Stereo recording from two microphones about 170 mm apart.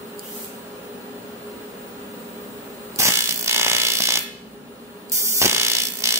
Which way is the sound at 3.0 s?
15° right (ahead or behind).